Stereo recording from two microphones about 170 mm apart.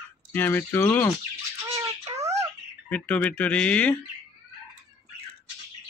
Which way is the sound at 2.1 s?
40° right (ahead or behind).